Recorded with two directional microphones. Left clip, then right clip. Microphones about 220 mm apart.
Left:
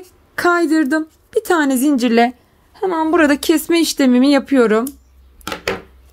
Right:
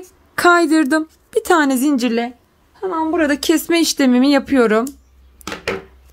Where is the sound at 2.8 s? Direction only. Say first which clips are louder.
Left 3 dB; 40° left (ahead or behind).